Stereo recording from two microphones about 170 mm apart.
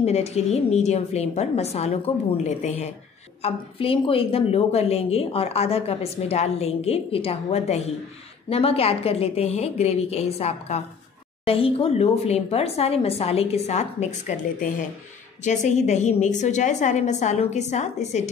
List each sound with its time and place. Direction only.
0.0 s a woman's voice: 40° left (ahead or behind)